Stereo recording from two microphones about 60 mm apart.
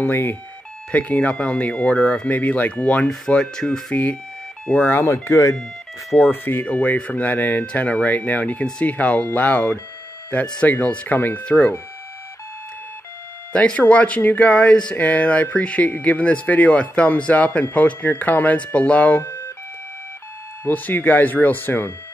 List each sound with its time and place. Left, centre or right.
0.0 s speech: left
0.9 s speech: left
3.9 s speech: left
5.0 s speech: left
6.1 s speech: left
10.4 s speech: centre; by 11.4 s left
11.4 s speech: left
13.7 s speech: left
19.2 s ambulance: left
20.6 s speech: left